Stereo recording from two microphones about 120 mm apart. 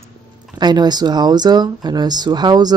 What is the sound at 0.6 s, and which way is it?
Speech, 35° right (ahead or behind).